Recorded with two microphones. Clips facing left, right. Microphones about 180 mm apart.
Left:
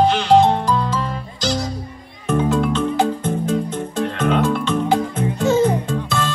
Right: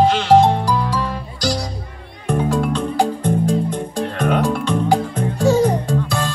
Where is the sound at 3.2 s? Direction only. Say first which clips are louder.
Right 2 dB; 15° right (ahead or behind).